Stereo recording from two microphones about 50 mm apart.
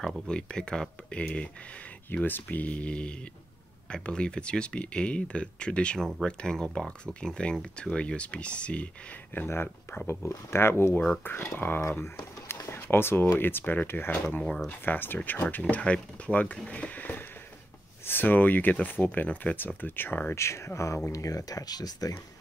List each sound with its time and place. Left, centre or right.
0.3 s speech: centre
2.1 s speech: left
2.4 s speech: left
9.3 s speech: left
11.2 s speech: left
12.0 s speech: left
14.4 s speech: centre
14.7 s speech: left
15.7 s speech: left
18.0 s speech: left
20.3 s speech: left